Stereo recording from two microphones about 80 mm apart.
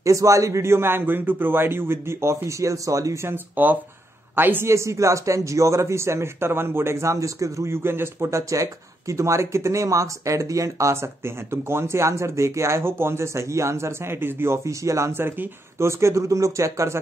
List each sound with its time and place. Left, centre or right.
0.0 s speech: right
3.3 s speech: right